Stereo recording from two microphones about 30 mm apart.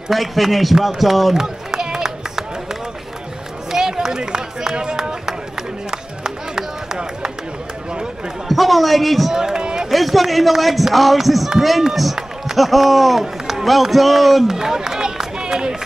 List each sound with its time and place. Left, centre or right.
0.1 s speech: centre
1.3 s run: centre
3.7 s run: centre
8.5 s speech: centre
9.3 s speech: centre
9.8 s speech: centre
14.5 s run: centre